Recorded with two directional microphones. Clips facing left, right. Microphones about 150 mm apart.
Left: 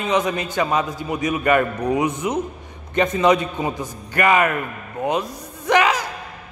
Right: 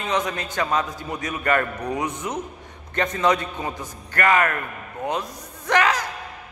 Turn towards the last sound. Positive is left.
turn(degrees=10)  # may be behind; listen again after turning